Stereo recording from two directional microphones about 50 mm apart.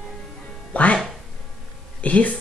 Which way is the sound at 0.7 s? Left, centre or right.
Left.